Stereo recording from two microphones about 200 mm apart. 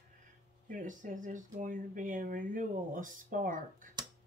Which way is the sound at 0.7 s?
40° right (ahead or behind).